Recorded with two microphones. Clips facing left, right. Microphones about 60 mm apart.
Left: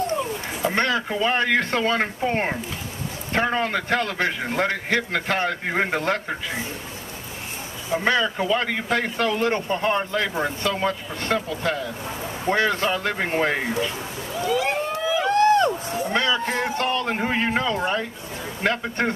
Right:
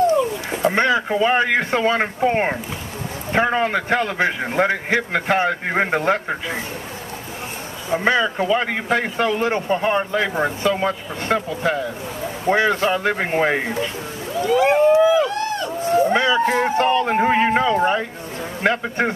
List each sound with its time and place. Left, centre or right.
0.7 s a man's voice: centre
8.0 s a man's voice: centre
15.2 s run: left
16.1 s a sound: centre
16.3 s a man's voice: right